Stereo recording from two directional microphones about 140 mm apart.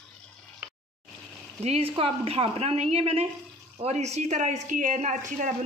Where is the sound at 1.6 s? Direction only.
45° right (ahead or behind).